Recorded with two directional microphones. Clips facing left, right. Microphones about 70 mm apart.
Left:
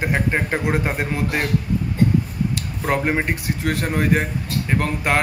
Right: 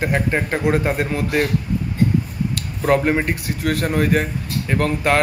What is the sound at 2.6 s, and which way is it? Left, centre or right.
Speech, centre.